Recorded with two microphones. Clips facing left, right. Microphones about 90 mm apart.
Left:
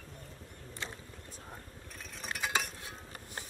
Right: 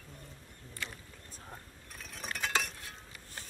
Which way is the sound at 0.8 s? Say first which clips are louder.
Even; 25° left (ahead or behind).